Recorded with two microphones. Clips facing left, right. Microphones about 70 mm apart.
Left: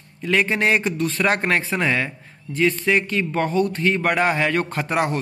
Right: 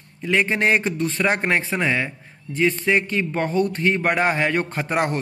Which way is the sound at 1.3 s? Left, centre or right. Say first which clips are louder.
Left 1 dB; centre.